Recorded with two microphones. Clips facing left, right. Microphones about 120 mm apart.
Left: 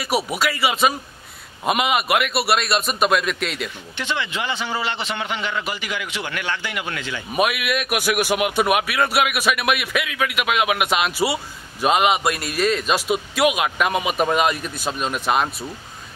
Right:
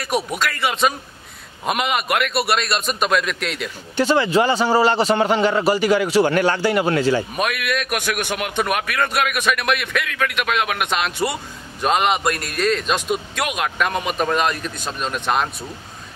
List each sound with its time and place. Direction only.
0.0 s a man's voice: 5° left (ahead or behind)
3.9 s a man's voice: 40° right (ahead or behind)
7.3 s a man's voice: 5° left (ahead or behind)